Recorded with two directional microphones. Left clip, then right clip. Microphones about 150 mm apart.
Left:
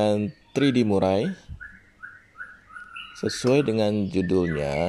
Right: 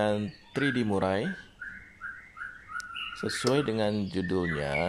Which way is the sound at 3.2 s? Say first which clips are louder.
Left 6 dB; 15° left (ahead or behind).